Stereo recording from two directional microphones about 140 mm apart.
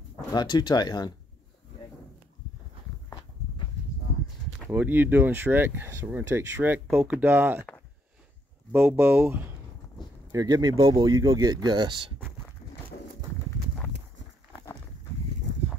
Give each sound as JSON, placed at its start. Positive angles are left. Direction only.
{"t": 0.3, "sound": "speech", "side_deg": 30}
{"t": 4.6, "sound": "speech", "side_deg": -15}
{"t": 8.7, "sound": "speech", "side_deg": -15}
{"t": 10.3, "sound": "speech", "side_deg": -30}